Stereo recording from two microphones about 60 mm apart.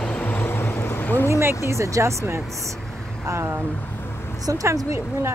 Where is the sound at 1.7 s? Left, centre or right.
Right.